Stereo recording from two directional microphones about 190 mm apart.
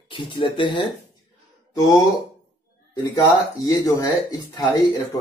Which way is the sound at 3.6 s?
20° left (ahead or behind).